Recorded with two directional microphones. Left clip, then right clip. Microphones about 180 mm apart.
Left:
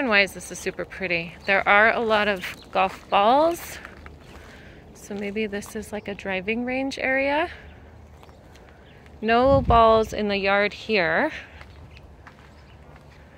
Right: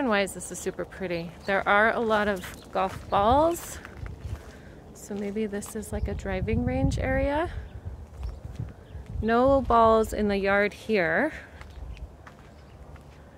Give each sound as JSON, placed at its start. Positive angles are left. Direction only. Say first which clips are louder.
{"t": 0.0, "sound": "speech", "louder": "left 5 dB", "side_deg": -10}
{"t": 5.1, "sound": "speech", "louder": "left 3 dB", "side_deg": -5}
{"t": 9.2, "sound": "speech", "louder": "left 3 dB", "side_deg": -10}